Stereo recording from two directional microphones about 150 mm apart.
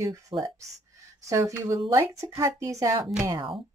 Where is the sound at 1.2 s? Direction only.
20° right (ahead or behind).